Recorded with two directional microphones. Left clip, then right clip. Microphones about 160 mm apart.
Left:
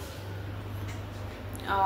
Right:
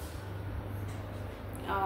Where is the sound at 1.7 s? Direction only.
10° right (ahead or behind).